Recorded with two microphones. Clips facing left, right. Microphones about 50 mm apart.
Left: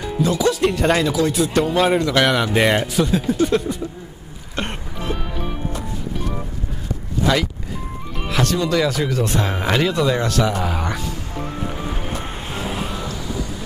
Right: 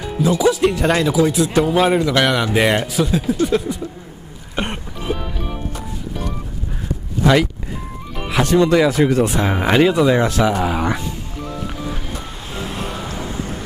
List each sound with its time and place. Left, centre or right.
0.2 s speech: centre
4.6 s music: centre
8.3 s music: centre
8.5 s speech: right
9.2 s speech: centre
11.3 s music: left
12.5 s vehicle: centre
13.1 s music: right